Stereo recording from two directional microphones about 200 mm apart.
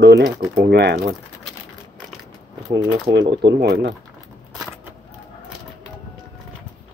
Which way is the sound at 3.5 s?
55° right (ahead or behind).